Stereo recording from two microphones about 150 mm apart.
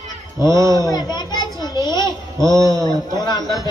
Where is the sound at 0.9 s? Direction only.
30° left (ahead or behind).